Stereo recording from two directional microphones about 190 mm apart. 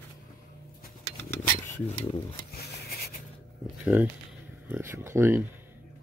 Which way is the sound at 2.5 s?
55° left (ahead or behind).